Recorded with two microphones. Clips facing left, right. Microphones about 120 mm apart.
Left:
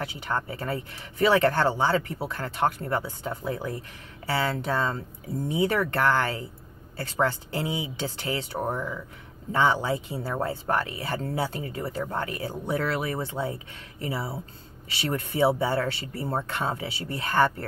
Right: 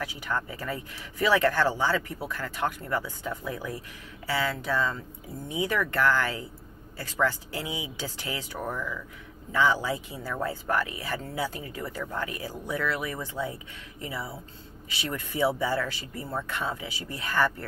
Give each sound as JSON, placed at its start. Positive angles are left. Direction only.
{"t": 0.0, "sound": "speech", "side_deg": 30}
{"t": 5.5, "sound": "speech", "side_deg": 35}